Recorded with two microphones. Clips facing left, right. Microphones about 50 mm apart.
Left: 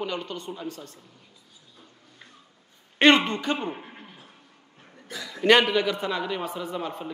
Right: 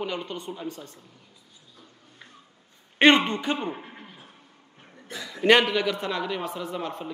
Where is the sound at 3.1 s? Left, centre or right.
Right.